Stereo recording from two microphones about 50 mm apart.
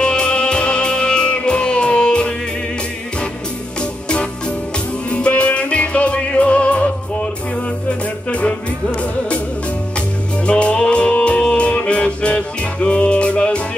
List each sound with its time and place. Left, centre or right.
0.0 s music: centre
4.1 s music: centre
8.3 s music: left
9.9 s music: left